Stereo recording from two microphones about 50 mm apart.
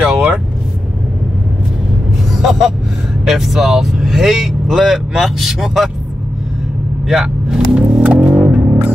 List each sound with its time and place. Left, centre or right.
0.0 s vehicle: centre
3.3 s speech: centre
7.1 s vehicle: centre
8.0 s vehicle: right
8.4 s music: right